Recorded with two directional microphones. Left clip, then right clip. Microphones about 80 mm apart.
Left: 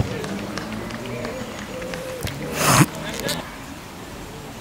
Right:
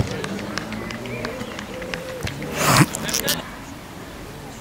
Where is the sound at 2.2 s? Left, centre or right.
Centre.